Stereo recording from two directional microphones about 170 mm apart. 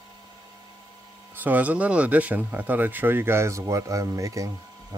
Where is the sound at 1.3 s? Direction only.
10° right (ahead or behind).